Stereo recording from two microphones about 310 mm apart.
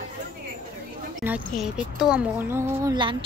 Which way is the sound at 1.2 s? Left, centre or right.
Centre.